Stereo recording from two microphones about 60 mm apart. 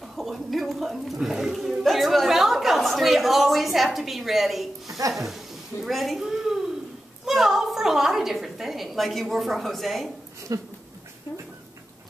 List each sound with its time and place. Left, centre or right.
0.0 s speech: centre
5.1 s a sound: centre
7.2 s speech: centre
10.5 s dog: right